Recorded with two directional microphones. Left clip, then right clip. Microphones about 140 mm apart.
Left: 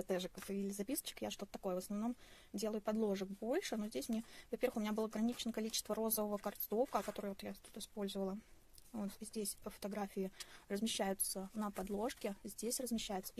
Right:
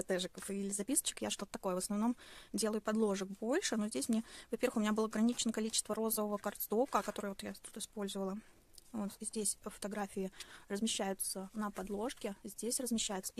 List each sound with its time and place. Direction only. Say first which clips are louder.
0.1 s speech: right 3 dB; 35° right (ahead or behind)